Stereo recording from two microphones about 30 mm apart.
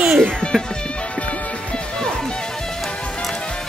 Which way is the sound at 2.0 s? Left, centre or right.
Left.